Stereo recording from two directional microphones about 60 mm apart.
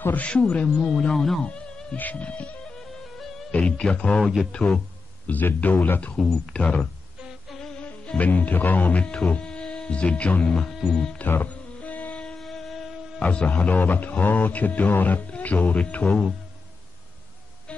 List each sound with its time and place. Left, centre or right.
0.0 s speech: left; by 1.4 s centre
1.4 s a sound: centre
2.0 s speech: left
3.5 s a man's voice: centre
6.2 s speech: centre
7.2 s humming: centre
7.5 s music: centre
7.8 s music: left
8.3 s speech: left; by 11.1 s centre
11.4 s music: left
12.4 s a sound: centre
13.2 s speech: left